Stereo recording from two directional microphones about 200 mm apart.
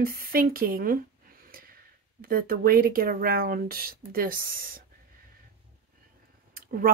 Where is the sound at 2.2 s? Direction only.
45° right (ahead or behind).